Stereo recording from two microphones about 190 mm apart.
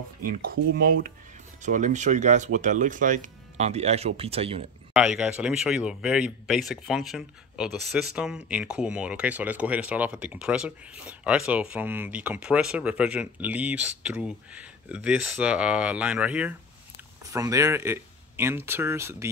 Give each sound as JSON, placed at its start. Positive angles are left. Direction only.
{"t": 0.2, "sound": "speech", "side_deg": -50}
{"t": 4.9, "sound": "speech", "side_deg": -5}